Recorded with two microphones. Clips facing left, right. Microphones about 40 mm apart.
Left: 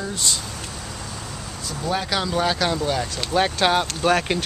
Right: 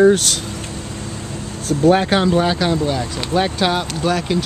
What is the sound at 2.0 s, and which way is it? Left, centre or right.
Speech, right.